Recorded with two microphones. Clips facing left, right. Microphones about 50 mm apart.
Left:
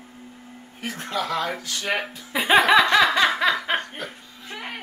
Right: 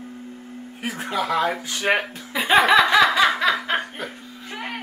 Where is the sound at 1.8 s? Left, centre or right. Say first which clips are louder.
Right 6 dB; right.